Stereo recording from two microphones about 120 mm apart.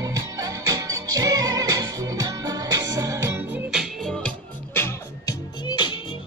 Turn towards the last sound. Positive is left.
turn(degrees=40)  # may be behind; listen again after turning